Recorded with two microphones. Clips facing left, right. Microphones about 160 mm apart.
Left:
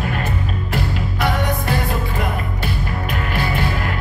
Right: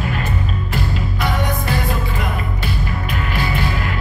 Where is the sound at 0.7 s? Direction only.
60° left (ahead or behind).